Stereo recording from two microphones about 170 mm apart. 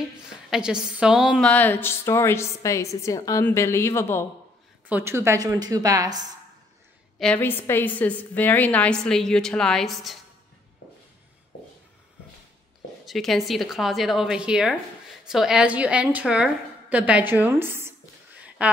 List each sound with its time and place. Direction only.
0.5 s a woman's voice: 5° right (ahead or behind)
1.4 s a woman's voice: 10° left (ahead or behind)
4.8 s a woman's voice: 10° right (ahead or behind)
7.2 s a woman's voice: 10° left (ahead or behind)
13.0 s a woman's voice: centre (ahead or behind)